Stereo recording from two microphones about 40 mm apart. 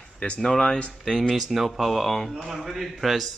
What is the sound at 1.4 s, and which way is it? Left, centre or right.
A man's voice, centre.